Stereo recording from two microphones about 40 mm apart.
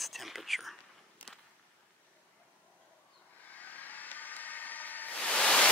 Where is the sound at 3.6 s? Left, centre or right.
Left.